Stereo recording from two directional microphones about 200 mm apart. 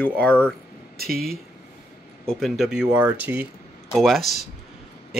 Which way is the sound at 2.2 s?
Centre (ahead or behind).